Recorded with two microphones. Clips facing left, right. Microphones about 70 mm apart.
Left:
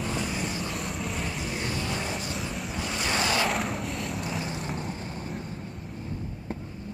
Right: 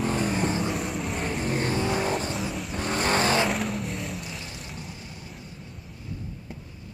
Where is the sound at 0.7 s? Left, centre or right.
Centre.